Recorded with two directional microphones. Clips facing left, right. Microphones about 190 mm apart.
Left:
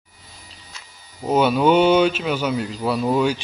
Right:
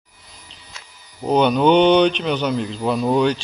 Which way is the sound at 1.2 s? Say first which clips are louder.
Right 1 dB; 5° left (ahead or behind).